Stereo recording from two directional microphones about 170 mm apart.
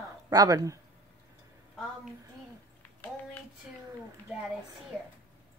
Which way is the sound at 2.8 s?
10° left (ahead or behind).